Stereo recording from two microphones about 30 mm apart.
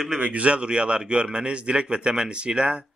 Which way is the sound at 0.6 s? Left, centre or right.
Right.